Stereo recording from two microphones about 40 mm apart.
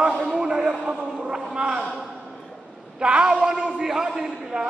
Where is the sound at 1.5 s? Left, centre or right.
Centre.